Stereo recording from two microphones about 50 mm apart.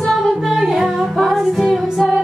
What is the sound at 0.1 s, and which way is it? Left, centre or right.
Music, centre.